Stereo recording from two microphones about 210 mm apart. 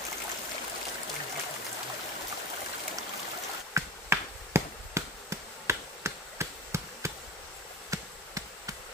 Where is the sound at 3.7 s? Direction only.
10° right (ahead or behind).